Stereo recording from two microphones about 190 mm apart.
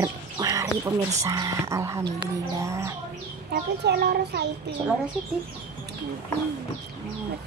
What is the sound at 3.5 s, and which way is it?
Speech, 60° right (ahead or behind).